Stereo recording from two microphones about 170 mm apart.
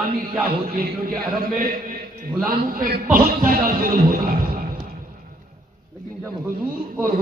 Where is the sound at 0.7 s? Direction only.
55° right (ahead or behind).